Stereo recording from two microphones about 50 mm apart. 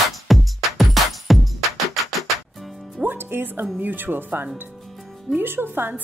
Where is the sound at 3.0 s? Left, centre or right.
Right.